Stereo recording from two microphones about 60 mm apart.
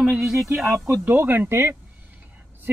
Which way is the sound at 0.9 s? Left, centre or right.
Right.